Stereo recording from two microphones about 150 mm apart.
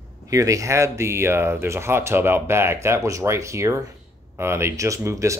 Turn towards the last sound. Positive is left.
turn(degrees=-20)  # may be behind; listen again after turning